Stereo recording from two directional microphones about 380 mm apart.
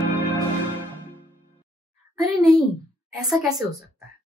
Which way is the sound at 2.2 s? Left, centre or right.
Centre.